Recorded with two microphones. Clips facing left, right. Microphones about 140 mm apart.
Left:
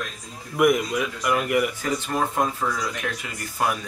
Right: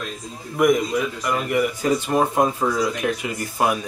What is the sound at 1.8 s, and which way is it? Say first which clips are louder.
Speech: right 6 dB; 15° right (ahead or behind).